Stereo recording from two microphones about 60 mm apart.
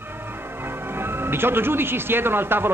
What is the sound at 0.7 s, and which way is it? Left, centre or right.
Speech, right.